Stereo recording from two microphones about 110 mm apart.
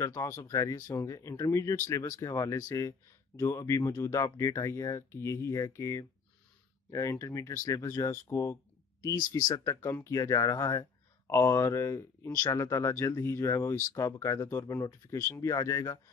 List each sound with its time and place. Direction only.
0.1 s speech: 25° left (ahead or behind)